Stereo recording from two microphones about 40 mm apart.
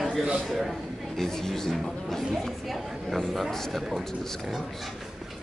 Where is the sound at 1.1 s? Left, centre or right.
Centre.